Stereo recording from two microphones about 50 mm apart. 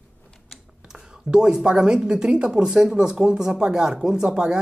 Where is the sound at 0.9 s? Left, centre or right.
Centre.